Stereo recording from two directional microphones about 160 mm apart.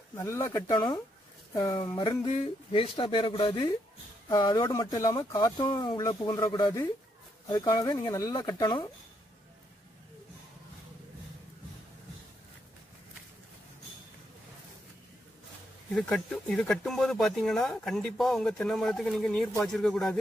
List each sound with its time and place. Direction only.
0.1 s speech: 15° left (ahead or behind)
1.5 s speech: 20° left (ahead or behind)
2.3 s speech: 35° left (ahead or behind)
15.9 s speech: 5° left (ahead or behind)